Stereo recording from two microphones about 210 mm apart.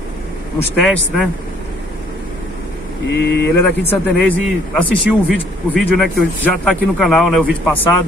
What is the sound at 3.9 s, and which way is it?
A man's voice, 5° left (ahead or behind).